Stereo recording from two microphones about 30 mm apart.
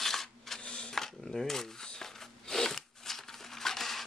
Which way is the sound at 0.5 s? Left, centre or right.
Left.